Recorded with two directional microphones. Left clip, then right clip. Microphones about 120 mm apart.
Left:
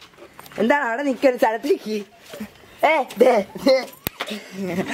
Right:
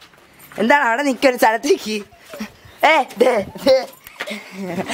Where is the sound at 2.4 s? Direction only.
30° right (ahead or behind).